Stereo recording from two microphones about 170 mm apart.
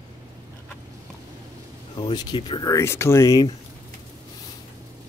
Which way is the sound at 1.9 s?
25° left (ahead or behind).